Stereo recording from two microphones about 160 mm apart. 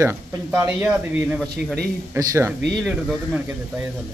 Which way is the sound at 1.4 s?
5° left (ahead or behind).